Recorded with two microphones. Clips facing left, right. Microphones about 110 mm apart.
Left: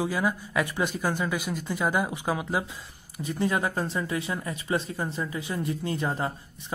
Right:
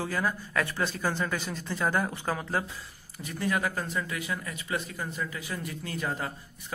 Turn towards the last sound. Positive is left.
turn(degrees=25)  # may be behind; listen again after turning